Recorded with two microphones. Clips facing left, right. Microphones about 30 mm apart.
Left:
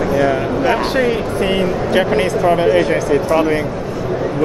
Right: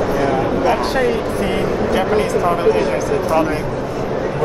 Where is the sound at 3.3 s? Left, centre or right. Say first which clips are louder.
Even; centre.